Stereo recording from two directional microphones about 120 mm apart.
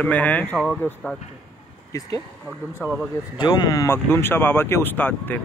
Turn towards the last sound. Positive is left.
turn(degrees=15)  # may be behind; listen again after turning